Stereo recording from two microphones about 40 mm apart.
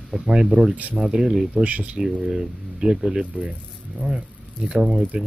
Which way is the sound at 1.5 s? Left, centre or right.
Right.